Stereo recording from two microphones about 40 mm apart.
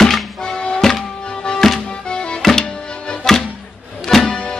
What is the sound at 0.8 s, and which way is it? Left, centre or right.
Music, centre.